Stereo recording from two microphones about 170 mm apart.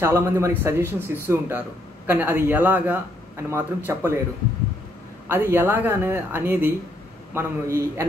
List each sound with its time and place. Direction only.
0.0 s speech: 15° right (ahead or behind)
5.3 s speech: 15° right (ahead or behind)